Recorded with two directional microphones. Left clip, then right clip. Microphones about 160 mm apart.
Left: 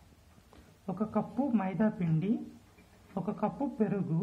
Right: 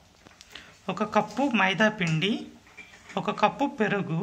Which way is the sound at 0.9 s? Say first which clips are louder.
Right 9 dB; 30° right (ahead or behind).